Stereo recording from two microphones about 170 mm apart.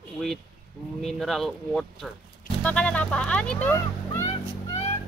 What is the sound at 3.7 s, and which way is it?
Music, 20° left (ahead or behind).